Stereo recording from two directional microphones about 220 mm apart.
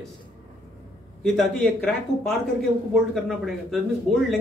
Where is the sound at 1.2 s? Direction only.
Centre (ahead or behind).